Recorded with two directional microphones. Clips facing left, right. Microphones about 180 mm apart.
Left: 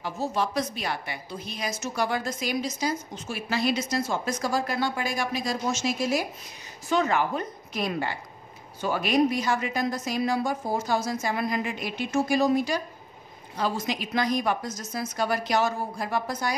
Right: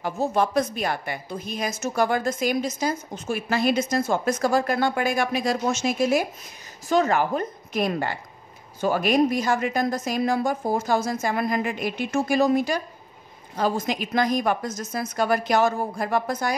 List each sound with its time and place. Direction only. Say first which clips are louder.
0.0 s a woman's voice: right 5 dB; 50° right (ahead or behind)